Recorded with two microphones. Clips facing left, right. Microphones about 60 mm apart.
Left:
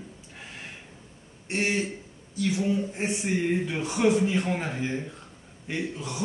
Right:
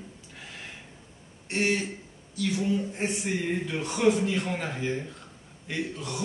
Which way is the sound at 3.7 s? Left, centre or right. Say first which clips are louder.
Right 2 dB; centre.